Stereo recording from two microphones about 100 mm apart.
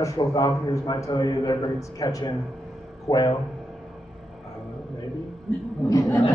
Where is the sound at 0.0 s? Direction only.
35° left (ahead or behind).